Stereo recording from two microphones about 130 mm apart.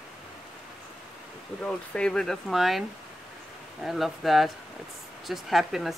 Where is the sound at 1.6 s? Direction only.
5° left (ahead or behind).